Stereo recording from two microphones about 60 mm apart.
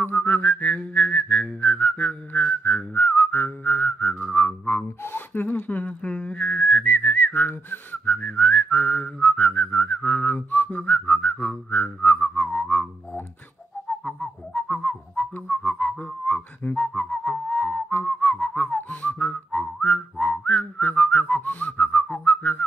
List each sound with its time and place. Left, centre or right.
0.0 s whistling: left
4.3 s music: left
4.6 s a sound: left
14.5 s whistling: left